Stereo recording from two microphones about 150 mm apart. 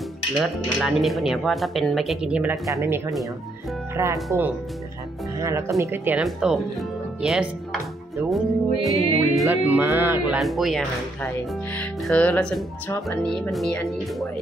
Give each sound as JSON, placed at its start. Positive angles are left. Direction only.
{"t": 0.4, "sound": "speech", "side_deg": 0}
{"t": 2.6, "sound": "speech", "side_deg": -20}
{"t": 6.2, "sound": "speech", "side_deg": 0}
{"t": 8.3, "sound": "music", "side_deg": 0}
{"t": 9.7, "sound": "speech", "side_deg": -15}
{"t": 10.3, "sound": "speech", "side_deg": 0}